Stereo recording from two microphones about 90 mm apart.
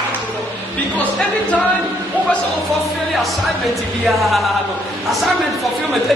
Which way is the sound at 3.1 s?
Centre (ahead or behind).